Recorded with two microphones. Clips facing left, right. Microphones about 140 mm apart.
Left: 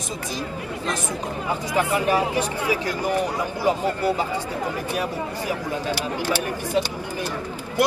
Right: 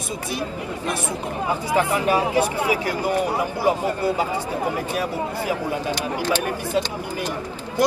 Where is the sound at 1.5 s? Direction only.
15° right (ahead or behind).